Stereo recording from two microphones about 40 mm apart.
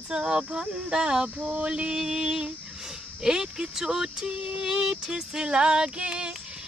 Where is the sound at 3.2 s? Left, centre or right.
Centre.